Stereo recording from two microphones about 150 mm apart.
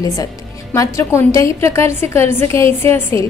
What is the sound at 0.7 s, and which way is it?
A woman's voice, 20° left (ahead or behind).